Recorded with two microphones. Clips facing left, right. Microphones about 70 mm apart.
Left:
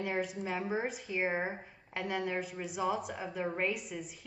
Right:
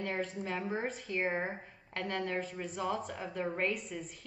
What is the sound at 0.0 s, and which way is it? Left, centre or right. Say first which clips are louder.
Speech: left 2 dB; centre.